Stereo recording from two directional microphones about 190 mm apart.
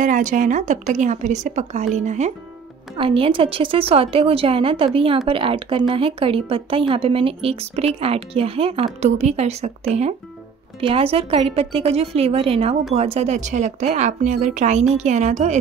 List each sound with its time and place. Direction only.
0.0 s a woman's voice: 45° right (ahead or behind)
10.8 s speech: 30° right (ahead or behind)